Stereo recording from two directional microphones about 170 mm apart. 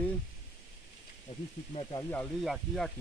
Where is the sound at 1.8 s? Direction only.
30° left (ahead or behind).